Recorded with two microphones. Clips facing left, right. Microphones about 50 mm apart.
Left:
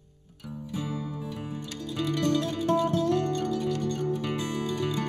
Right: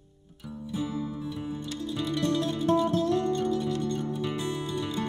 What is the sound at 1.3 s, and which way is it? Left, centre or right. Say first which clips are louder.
Music: right 2 dB; left.